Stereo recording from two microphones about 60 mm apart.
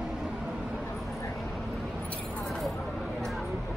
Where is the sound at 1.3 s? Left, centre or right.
Centre.